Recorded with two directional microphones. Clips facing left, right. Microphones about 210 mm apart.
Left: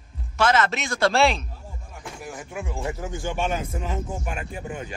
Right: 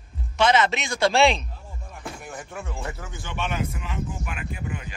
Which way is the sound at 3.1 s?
45° left (ahead or behind).